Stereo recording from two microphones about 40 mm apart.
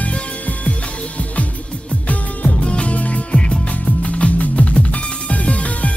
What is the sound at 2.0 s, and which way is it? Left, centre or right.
Music, left.